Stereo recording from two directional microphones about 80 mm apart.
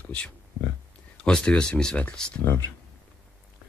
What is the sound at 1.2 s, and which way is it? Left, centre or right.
Speech, centre.